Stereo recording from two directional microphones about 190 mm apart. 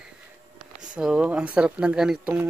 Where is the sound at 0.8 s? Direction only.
5° right (ahead or behind).